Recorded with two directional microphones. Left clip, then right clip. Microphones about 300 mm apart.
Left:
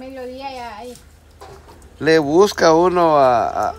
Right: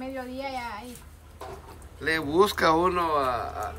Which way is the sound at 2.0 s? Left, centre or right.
Centre.